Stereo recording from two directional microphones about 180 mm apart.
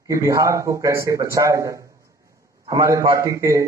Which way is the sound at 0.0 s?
15° right (ahead or behind).